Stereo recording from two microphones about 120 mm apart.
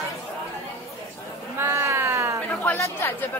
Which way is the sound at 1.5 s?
20° right (ahead or behind).